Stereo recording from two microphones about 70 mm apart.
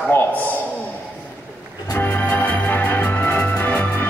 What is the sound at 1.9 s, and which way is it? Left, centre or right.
Music, left.